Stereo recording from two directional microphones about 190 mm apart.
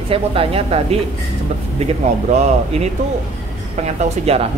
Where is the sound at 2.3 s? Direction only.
35° right (ahead or behind).